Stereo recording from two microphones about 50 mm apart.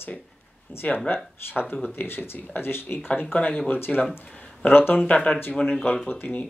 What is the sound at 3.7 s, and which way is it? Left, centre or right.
Speech, left.